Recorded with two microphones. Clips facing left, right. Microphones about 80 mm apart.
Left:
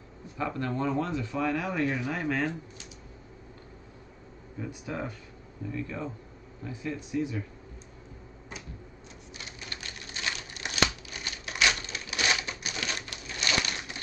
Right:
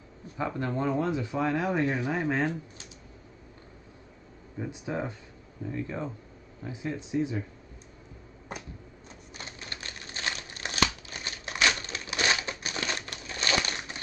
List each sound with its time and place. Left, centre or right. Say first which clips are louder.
0.4 s speech: right 1 dB; right
4.6 s speech: right 2 dB; right
9.4 s typewriter: right 1 dB; right
10.6 s scissors: even; right